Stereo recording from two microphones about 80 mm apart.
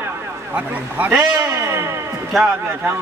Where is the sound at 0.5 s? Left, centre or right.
Right.